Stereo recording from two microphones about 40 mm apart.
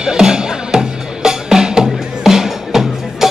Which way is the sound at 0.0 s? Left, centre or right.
Centre.